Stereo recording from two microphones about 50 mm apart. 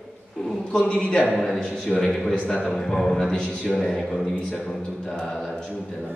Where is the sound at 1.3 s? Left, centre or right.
Centre.